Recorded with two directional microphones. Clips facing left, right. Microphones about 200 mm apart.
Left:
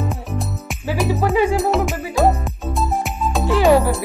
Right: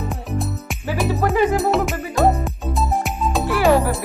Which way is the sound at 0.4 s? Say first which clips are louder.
Right 1 dB; centre (ahead or behind).